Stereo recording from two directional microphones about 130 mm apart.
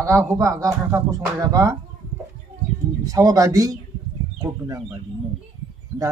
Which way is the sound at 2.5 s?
55° right (ahead or behind).